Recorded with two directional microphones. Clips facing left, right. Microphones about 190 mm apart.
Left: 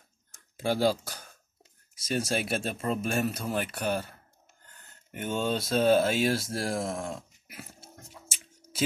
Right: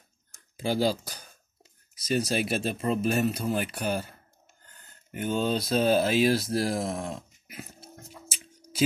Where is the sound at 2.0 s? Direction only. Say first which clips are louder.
Right 3 dB; 50° left (ahead or behind).